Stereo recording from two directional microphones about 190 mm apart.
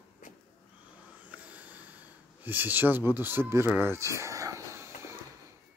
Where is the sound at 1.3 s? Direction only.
10° right (ahead or behind).